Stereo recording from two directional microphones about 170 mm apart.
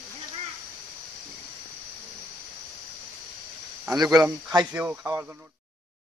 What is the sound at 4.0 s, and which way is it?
Speech, 20° right (ahead or behind).